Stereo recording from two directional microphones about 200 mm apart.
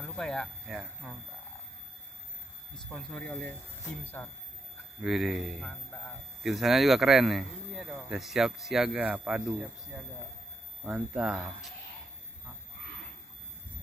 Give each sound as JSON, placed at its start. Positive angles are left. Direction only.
{"t": 0.0, "sound": "speech", "side_deg": 5}
{"t": 2.9, "sound": "speech", "side_deg": 5}
{"t": 5.0, "sound": "speech", "side_deg": 0}